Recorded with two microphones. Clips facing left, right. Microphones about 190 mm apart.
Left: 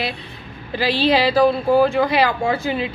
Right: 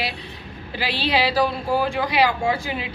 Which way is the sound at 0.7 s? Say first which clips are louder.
Left 6 dB; 40° left (ahead or behind).